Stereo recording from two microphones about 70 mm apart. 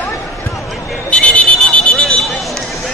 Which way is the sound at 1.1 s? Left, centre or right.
Centre.